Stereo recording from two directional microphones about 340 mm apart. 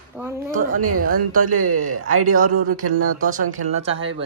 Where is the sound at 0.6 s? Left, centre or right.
Right.